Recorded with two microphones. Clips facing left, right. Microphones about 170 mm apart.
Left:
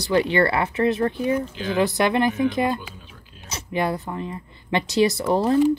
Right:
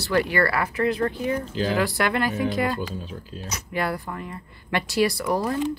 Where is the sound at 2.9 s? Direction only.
40° right (ahead or behind).